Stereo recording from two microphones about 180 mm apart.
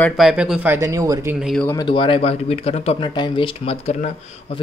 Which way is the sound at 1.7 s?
25° left (ahead or behind).